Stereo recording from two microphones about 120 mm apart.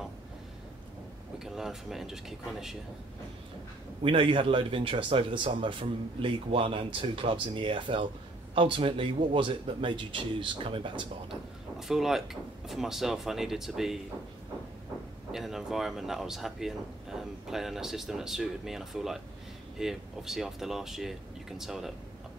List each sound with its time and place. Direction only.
1.4 s speech: 5° right (ahead or behind)
4.0 s speech: 45° right (ahead or behind)
11.9 s speech: 5° right (ahead or behind)
15.3 s speech: centre (ahead or behind)